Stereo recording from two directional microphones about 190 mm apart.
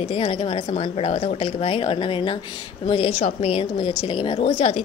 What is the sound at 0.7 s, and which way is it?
A woman's voice, 30° left (ahead or behind).